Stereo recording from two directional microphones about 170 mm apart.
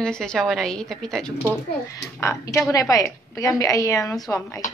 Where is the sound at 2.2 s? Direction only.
15° left (ahead or behind).